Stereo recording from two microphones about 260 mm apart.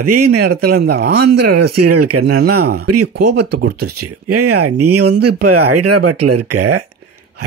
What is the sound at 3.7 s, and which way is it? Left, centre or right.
Speech, right.